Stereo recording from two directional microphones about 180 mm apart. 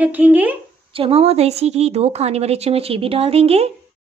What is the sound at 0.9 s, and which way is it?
A woman's voice, 30° right (ahead or behind).